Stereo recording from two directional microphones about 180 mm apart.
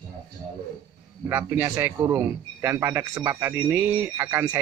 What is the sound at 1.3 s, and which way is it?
A man's voice, 15° right (ahead or behind).